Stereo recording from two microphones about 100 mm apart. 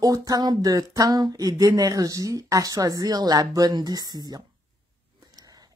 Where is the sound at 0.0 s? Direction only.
35° right (ahead or behind).